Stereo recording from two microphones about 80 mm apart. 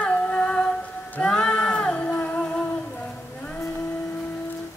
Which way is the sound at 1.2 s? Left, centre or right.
Centre.